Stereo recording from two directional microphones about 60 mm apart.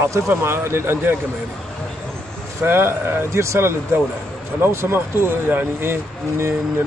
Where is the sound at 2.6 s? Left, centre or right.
Right.